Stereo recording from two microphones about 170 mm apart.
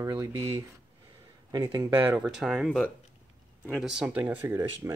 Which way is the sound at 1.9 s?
10° right (ahead or behind).